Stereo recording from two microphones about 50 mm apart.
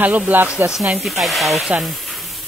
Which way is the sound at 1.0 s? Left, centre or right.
Centre.